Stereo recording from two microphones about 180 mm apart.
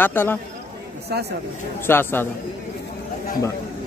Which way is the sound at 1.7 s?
10° left (ahead or behind).